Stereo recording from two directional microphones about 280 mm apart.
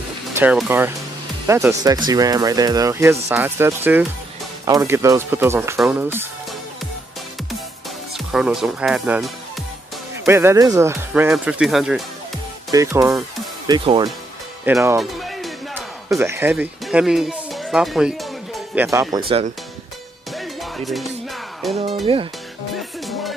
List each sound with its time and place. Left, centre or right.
0.4 s speech: centre
8.3 s speech: centre
14.6 s music: centre
20.3 s music: centre
21.6 s speech: centre
22.0 s speech: centre
22.8 s music: centre